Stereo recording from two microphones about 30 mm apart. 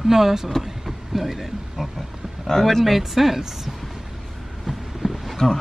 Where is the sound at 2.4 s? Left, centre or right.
Centre.